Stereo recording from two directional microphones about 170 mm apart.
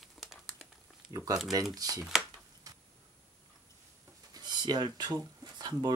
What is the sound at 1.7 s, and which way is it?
Speech, 20° right (ahead or behind).